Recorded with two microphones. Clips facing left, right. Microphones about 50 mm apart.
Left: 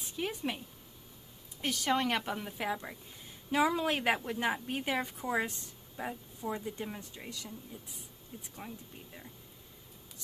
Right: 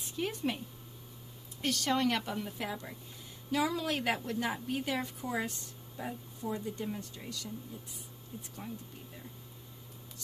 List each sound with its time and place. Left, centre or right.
0.0 s speech: centre
1.6 s a woman's voice: centre
8.5 s a woman's voice: centre